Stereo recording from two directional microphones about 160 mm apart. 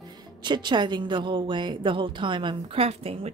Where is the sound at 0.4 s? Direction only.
30° right (ahead or behind).